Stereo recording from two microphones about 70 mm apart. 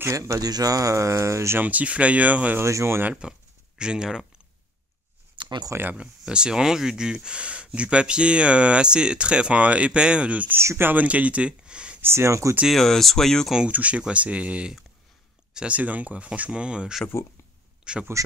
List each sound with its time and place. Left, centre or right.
0.0 s speech: right
0.4 s speech: right
1.6 s speech: right
2.6 s speech: right
3.2 s speech: centre
5.4 s a sound: right
5.9 s speech: centre
10.5 s speech: right
10.9 s speech: right
12.0 s speech: right
12.6 s speech: centre
13.7 s a man's voice: right